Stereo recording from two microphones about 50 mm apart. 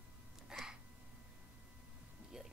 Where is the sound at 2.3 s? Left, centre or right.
Centre.